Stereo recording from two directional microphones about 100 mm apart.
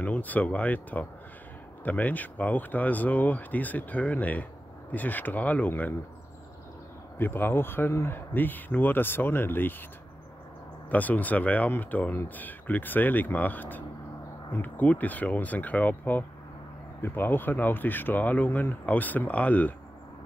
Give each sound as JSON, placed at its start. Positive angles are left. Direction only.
{"t": 0.0, "sound": "speech", "side_deg": 15}
{"t": 7.2, "sound": "speech", "side_deg": 20}
{"t": 10.9, "sound": "speech", "side_deg": 15}